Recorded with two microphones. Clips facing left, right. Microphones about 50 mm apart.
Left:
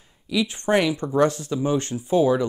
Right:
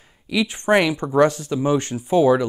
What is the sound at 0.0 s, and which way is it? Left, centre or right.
Speech, right.